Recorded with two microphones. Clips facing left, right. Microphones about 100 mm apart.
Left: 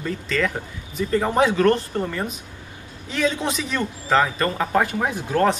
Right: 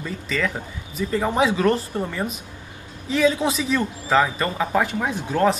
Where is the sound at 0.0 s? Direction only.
5° right (ahead or behind).